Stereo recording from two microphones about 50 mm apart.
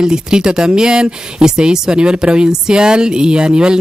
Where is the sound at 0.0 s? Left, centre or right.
Centre.